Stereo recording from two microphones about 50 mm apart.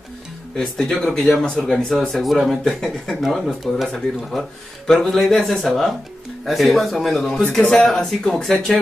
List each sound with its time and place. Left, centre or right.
0.6 s speech: centre
1.4 s speech: centre
1.7 s speech: centre